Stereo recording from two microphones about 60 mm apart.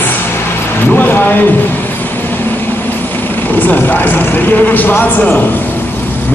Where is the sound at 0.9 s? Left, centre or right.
Left.